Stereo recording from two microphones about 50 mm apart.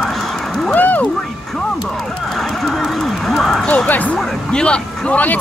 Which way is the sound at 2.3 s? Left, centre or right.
Centre.